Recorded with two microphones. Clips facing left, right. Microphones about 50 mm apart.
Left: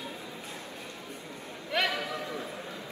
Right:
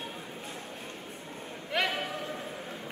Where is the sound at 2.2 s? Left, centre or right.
Right.